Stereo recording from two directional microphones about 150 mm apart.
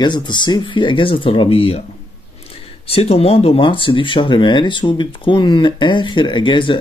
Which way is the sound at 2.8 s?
40° left (ahead or behind).